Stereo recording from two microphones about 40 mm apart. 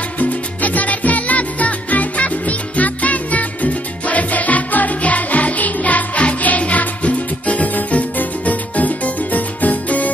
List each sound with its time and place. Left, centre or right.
0.2 s music: left